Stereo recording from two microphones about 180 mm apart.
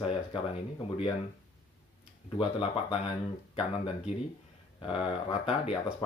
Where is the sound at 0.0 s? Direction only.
35° left (ahead or behind).